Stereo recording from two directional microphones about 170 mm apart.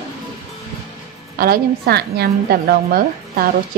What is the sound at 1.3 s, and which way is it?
A woman's voice, 60° right (ahead or behind).